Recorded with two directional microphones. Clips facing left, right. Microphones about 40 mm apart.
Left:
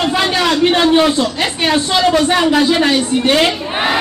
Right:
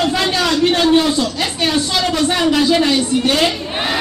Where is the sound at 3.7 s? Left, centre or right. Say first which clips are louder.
Left 4 dB; centre.